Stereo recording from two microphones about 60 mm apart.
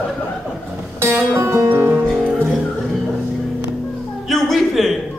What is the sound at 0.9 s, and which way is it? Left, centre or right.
Music, right.